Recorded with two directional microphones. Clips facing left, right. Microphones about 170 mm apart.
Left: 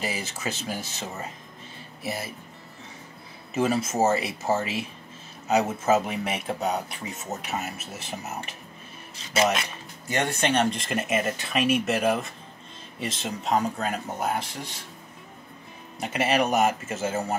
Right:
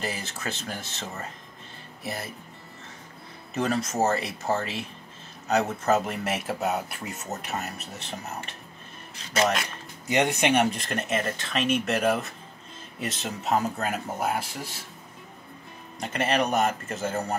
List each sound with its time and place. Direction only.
0.0 s speech: 5° left (ahead or behind)
3.5 s speech: 5° left (ahead or behind)
10.0 s speech: 15° right (ahead or behind)
16.0 s speech: 5° left (ahead or behind)